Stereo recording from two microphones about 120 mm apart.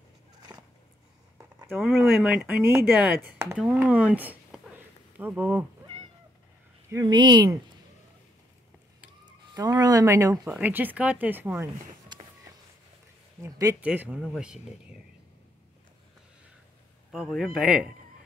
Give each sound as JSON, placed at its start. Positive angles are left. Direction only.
{"t": 0.5, "sound": "a sound", "side_deg": -35}
{"t": 1.8, "sound": "speech", "side_deg": -5}
{"t": 6.9, "sound": "speech", "side_deg": -35}
{"t": 9.2, "sound": "speech", "side_deg": -35}
{"t": 10.4, "sound": "speech", "side_deg": -10}
{"t": 12.1, "sound": "a sound", "side_deg": -35}
{"t": 13.4, "sound": "speech", "side_deg": -30}
{"t": 13.7, "sound": "speech", "side_deg": -10}
{"t": 17.3, "sound": "speech", "side_deg": 0}